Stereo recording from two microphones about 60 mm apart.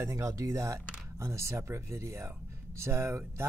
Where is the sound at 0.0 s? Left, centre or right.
Right.